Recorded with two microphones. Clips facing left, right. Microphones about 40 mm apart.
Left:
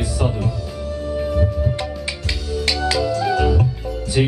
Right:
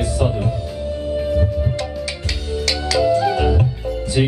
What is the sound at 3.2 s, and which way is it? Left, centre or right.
Music, centre.